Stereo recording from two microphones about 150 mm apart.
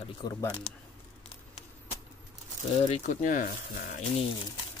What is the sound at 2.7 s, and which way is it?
Speech, 45° left (ahead or behind).